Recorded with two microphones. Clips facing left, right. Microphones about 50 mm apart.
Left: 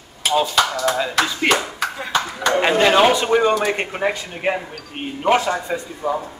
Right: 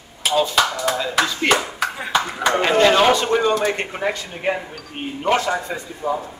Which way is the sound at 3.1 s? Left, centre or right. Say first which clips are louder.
Left 2 dB; centre.